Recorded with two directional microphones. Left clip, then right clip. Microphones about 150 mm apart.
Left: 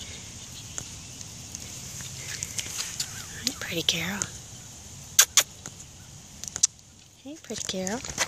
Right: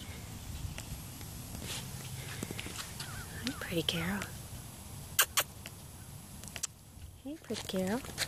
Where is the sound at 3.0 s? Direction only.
10° left (ahead or behind).